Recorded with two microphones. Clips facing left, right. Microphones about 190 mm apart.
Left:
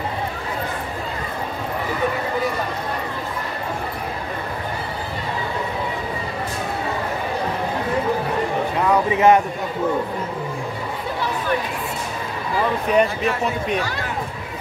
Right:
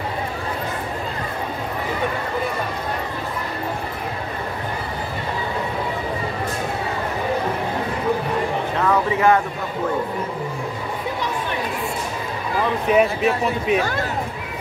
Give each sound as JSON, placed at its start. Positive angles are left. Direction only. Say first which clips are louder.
{"t": 8.7, "sound": "speech", "louder": "left 1 dB", "side_deg": 15}
{"t": 12.9, "sound": "a man's voice", "louder": "right 2 dB", "side_deg": -5}